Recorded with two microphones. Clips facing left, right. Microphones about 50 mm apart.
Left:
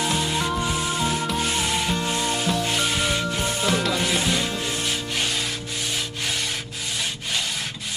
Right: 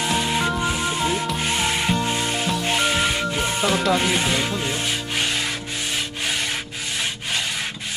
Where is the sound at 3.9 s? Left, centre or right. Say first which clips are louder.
Right 3 dB; right.